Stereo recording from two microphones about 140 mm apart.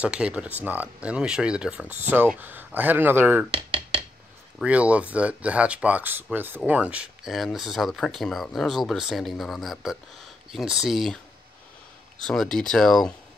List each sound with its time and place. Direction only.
0.0 s speech: 10° right (ahead or behind)
3.5 s dishes: 40° right (ahead or behind)
4.6 s speech: 10° right (ahead or behind)
12.2 s speech: 5° left (ahead or behind)